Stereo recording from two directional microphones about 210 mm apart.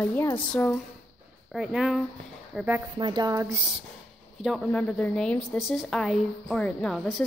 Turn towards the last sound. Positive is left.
turn(degrees=0)  # may be behind; listen again after turning